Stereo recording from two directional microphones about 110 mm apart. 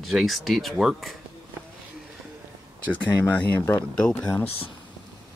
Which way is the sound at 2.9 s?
15° left (ahead or behind).